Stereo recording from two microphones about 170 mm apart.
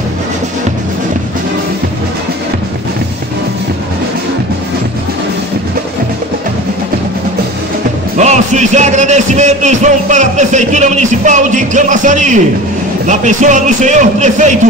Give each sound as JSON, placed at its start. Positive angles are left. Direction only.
{"t": 8.2, "sound": "speech", "side_deg": -45}